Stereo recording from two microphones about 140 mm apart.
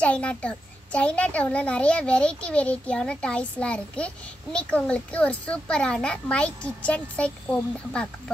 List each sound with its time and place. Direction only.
0.0 s a child's voice: 10° left (ahead or behind)